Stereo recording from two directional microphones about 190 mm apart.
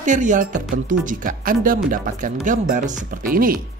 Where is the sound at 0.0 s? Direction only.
40° right (ahead or behind).